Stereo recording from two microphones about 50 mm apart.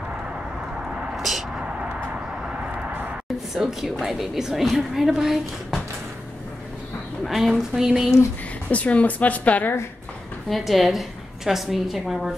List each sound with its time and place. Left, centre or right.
1.1 s vehicle: centre
3.5 s a woman's voice: centre
7.2 s a woman's voice: centre
8.6 s speech: left
10.5 s a woman's voice: centre